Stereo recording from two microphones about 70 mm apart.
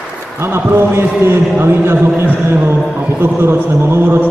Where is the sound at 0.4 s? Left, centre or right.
Right.